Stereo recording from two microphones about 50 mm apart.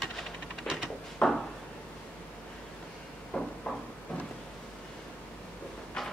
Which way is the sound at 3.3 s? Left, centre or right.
Left.